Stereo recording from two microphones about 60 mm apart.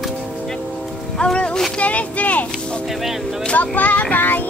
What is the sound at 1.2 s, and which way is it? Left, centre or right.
Music, centre.